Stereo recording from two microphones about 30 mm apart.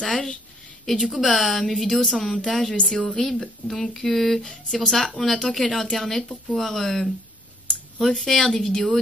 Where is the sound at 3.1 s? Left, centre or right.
Centre.